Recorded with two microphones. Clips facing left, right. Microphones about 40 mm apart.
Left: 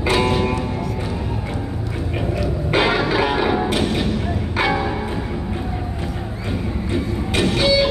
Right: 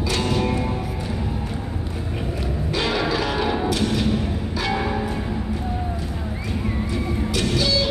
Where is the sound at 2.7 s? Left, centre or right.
Left.